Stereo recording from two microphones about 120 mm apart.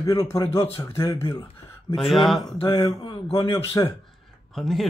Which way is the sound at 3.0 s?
40° left (ahead or behind).